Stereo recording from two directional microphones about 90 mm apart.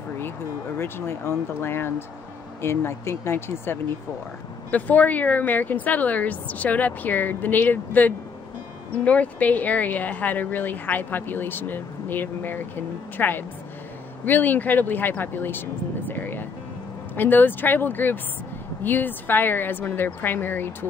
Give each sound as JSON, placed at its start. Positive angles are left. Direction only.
{"t": 0.7, "sound": "speech", "side_deg": 25}